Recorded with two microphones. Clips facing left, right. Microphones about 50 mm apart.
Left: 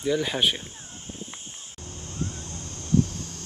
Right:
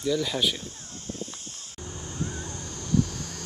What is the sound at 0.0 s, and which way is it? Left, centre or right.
Speech, left.